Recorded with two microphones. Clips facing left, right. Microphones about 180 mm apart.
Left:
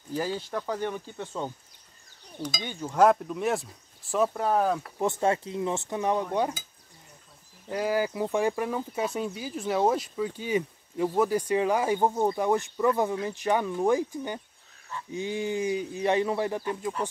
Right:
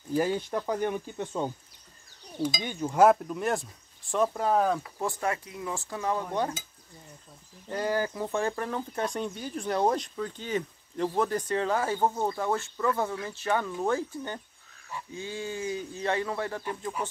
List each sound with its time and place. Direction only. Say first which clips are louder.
0.1 s speech: right 3 dB; 15° right (ahead or behind)
2.5 s speech: right 2 dB; 15° right (ahead or behind); by 4.7 s centre (ahead or behind)
4.9 s cutlery: left 5 dB; 25° left (ahead or behind)
7.7 s speech: left 2 dB; 10° left (ahead or behind)